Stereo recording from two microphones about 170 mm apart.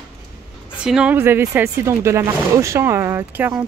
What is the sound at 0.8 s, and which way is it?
Speech, 5° right (ahead or behind).